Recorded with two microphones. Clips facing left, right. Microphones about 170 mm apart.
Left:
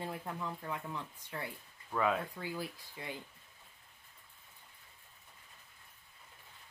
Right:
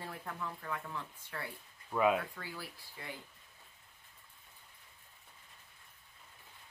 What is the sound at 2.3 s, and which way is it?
Speech, 20° left (ahead or behind).